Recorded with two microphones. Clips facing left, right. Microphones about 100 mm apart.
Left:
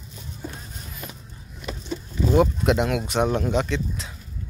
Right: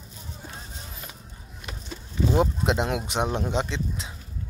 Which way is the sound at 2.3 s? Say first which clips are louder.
Left 5 dB; 25° right (ahead or behind).